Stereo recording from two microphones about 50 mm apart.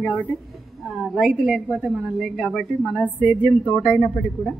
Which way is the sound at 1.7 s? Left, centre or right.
Centre.